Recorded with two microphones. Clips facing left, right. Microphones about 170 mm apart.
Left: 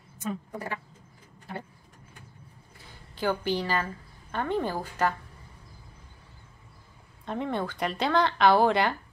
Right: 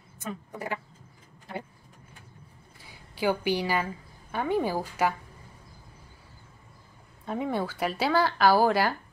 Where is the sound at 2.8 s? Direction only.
10° right (ahead or behind).